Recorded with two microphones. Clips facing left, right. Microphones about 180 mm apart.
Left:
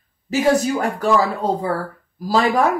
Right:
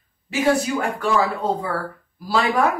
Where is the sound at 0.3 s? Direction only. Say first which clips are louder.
Left 3 dB; 40° left (ahead or behind).